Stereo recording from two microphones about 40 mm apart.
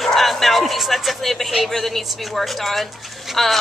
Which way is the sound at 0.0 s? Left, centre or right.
Centre.